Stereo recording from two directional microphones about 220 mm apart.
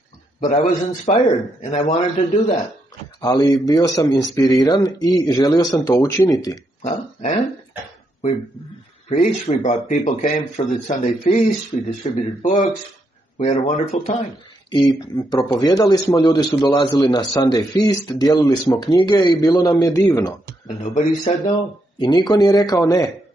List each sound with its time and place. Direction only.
0.4 s a man's voice: 35° left (ahead or behind); by 6.6 s 15° left (ahead or behind)
6.8 s a sound: 30° left (ahead or behind)
9.1 s speech: 35° left (ahead or behind)
15.1 s a man's voice: 20° left (ahead or behind)
20.6 s a man's voice: 30° left (ahead or behind)